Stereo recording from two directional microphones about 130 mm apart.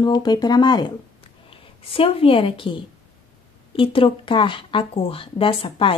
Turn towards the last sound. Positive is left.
turn(degrees=40)  # may be behind; listen again after turning